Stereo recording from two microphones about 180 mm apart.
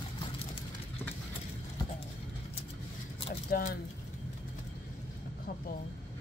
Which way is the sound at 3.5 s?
55° left (ahead or behind).